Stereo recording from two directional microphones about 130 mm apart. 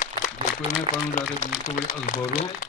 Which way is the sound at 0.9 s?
40° right (ahead or behind).